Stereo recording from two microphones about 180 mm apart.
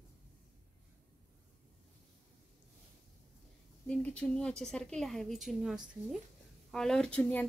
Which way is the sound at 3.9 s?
5° left (ahead or behind).